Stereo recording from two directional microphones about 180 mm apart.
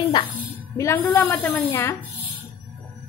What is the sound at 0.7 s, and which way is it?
A woman's voice, 15° left (ahead or behind).